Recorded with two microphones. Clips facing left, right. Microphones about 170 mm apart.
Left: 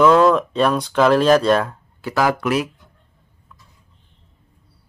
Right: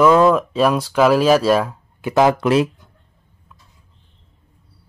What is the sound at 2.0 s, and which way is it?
Speech, 20° right (ahead or behind).